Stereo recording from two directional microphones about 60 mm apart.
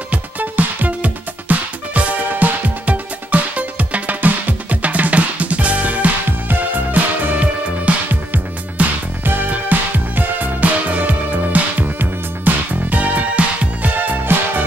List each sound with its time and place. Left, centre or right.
0.1 s music: right
13.9 s music: right